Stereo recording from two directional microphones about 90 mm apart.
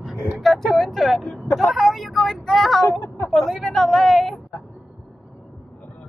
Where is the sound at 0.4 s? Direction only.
5° left (ahead or behind).